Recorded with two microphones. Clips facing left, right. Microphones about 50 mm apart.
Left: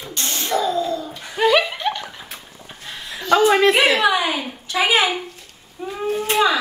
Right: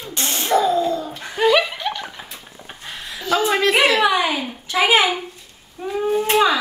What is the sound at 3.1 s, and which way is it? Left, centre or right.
Speech, centre.